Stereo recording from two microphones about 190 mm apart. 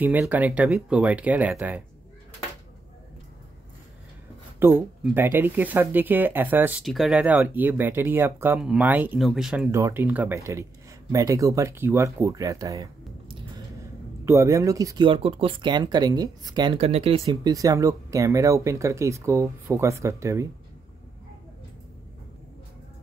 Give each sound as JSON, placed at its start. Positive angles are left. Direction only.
{"t": 0.0, "sound": "speech", "side_deg": -10}
{"t": 4.6, "sound": "speech", "side_deg": -10}
{"t": 9.7, "sound": "speech", "side_deg": -15}
{"t": 14.2, "sound": "speech", "side_deg": -15}
{"t": 17.3, "sound": "speech", "side_deg": -20}